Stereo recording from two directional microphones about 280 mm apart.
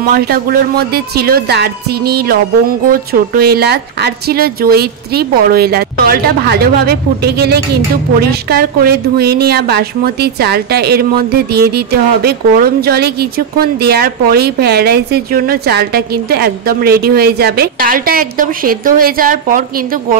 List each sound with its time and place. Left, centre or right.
0.0 s a woman's voice: right